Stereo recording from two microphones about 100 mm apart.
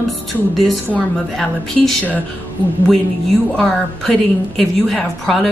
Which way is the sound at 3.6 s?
5° left (ahead or behind).